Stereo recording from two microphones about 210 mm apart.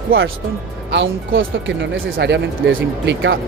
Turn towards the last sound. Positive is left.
turn(degrees=-55)  # may be behind; listen again after turning